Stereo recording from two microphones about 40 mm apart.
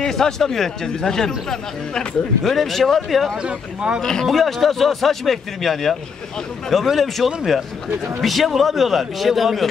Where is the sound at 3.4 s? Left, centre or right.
Right.